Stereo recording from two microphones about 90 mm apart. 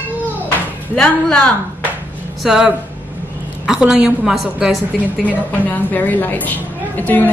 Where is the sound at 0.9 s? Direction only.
10° left (ahead or behind).